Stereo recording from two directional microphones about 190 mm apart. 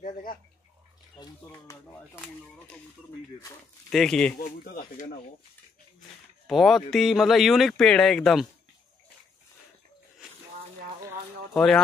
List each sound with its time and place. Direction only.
0.0 s bathtub: 45° left (ahead or behind)
2.0 s speech: 10° left (ahead or behind)
3.9 s speech: 5° left (ahead or behind)
6.4 s speech: centre (ahead or behind)
11.5 s speech: centre (ahead or behind)